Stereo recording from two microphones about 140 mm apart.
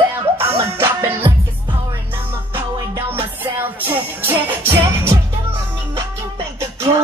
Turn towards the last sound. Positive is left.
turn(degrees=-20)  # may be behind; listen again after turning